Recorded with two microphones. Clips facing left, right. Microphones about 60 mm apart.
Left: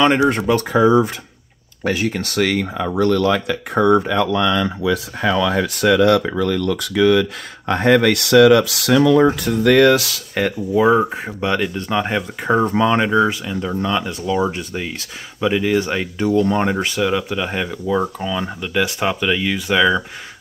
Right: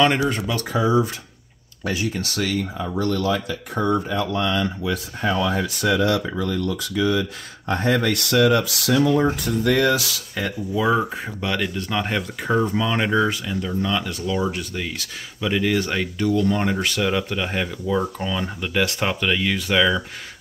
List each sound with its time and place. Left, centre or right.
0.0 s speech: left
0.3 s speech: left
3.1 s speech: left
10.8 s speech: left
11.7 s speech: centre
12.4 s speech: left
13.0 s speech: centre
13.6 s speech: left
15.4 s speech: centre
16.2 s speech: left
17.0 s speech: centre
18.6 s speech: centre